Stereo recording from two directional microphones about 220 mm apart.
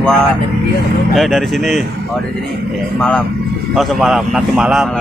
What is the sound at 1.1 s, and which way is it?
Speech, centre (ahead or behind).